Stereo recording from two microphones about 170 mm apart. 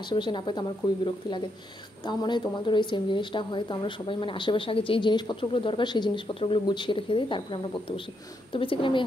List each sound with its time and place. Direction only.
0.1 s speech: 25° left (ahead or behind)